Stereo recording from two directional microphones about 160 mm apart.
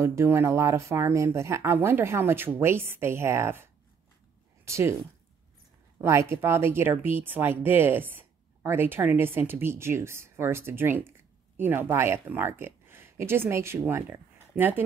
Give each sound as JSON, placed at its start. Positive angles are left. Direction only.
{"t": 0.0, "sound": "speech", "side_deg": -15}
{"t": 5.9, "sound": "speech", "side_deg": -15}